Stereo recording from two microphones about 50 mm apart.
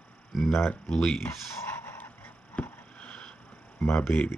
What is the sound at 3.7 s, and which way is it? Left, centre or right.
Speech, left.